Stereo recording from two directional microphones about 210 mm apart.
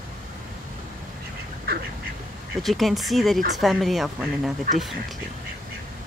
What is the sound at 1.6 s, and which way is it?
Duck, 45° right (ahead or behind).